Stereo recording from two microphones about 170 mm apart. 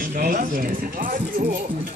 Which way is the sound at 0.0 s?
50° right (ahead or behind).